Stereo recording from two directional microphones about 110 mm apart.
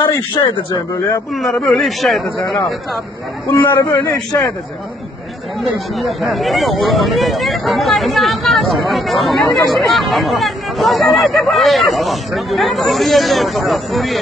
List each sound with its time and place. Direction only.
0.4 s a man's voice: 40° left (ahead or behind)
1.3 s speech: centre (ahead or behind)
3.7 s a man's voice: 30° left (ahead or behind)
5.6 s speech: centre (ahead or behind)